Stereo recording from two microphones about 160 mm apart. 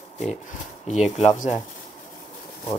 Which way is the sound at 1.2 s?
45° left (ahead or behind).